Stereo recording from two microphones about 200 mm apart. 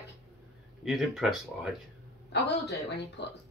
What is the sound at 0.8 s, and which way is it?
Speech, centre (ahead or behind).